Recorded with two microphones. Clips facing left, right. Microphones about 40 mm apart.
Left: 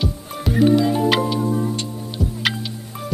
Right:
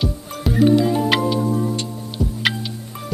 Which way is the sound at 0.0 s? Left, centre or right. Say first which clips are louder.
Right 1 dB; centre.